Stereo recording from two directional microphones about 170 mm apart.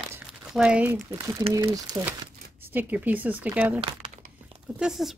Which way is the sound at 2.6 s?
10° right (ahead or behind).